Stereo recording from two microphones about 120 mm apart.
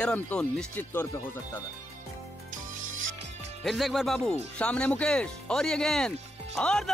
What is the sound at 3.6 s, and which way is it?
Speech, centre (ahead or behind).